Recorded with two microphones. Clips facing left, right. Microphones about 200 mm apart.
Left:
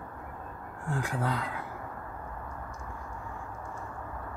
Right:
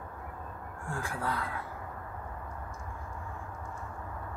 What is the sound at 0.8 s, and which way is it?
Speech, 20° left (ahead or behind).